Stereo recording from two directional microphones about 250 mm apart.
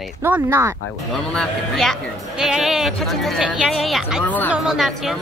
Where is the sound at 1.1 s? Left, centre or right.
Centre.